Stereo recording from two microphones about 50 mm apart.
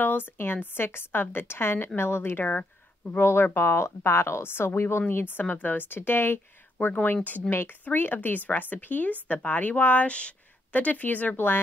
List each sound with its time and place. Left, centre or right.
0.0 s a woman's voice: left
2.3 s speech: left
3.1 s speech: left
5.1 s a woman's voice: left
6.9 s speech: left
11.3 s a woman's voice: left